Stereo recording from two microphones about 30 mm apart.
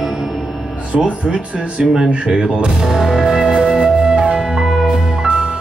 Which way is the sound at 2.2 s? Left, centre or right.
Right.